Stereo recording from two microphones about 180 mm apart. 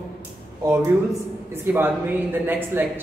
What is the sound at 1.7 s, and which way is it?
Speech, 10° right (ahead or behind).